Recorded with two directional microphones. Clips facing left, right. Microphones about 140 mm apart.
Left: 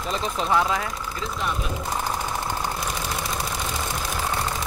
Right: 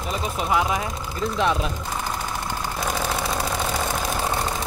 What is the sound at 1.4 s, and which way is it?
Speech, 90° right.